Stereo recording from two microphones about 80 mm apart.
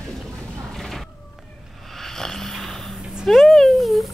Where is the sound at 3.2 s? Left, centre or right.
Centre.